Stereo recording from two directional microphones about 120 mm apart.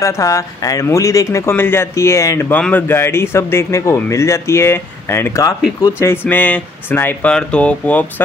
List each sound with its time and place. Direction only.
0.0 s speech: 25° left (ahead or behind)
2.5 s speech: 15° left (ahead or behind)